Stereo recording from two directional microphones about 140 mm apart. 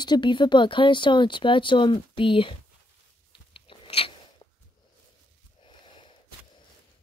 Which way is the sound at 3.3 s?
40° left (ahead or behind).